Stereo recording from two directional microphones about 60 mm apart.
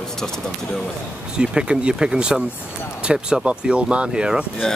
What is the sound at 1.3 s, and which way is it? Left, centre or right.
Speech, centre.